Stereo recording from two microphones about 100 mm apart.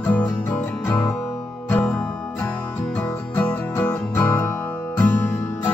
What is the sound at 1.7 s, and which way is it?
Music, 10° left (ahead or behind).